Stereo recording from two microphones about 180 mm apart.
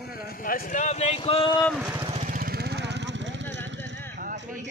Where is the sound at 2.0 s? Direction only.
35° right (ahead or behind).